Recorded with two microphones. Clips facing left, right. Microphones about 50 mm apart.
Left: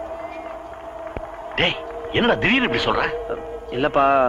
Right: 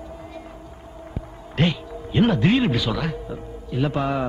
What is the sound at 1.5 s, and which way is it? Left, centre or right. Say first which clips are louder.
A man's voice: left 1 dB; left.